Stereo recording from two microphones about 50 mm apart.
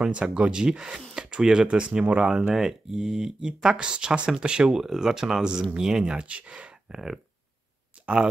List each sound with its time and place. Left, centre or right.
0.0 s speech: right
1.7 s speech: right
2.4 s speech: centre; by 7.0 s right
8.0 s plop: right